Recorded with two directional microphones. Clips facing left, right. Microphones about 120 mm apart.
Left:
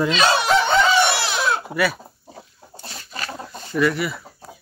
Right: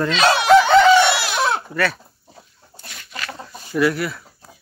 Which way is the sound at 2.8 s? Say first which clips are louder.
Even; 30° left (ahead or behind).